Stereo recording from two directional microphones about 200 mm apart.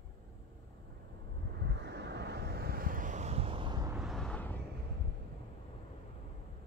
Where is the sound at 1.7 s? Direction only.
55° right (ahead or behind); by 4.0 s 20° right (ahead or behind).